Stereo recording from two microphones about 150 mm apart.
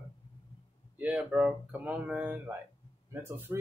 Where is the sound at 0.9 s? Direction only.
10° right (ahead or behind).